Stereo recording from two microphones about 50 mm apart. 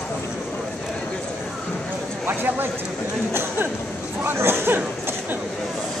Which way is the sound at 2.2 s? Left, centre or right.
Right.